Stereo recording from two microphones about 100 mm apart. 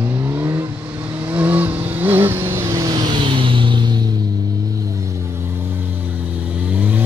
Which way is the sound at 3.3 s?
60° right (ahead or behind).